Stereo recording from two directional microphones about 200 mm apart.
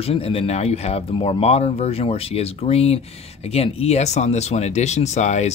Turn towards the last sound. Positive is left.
turn(degrees=35)  # may be behind; listen again after turning